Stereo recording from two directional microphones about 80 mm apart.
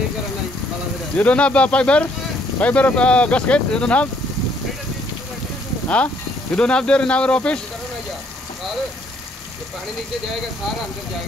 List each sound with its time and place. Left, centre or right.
1.1 s speech: centre
6.5 s speech: centre